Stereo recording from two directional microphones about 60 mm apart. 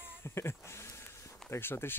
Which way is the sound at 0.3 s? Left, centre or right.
Left.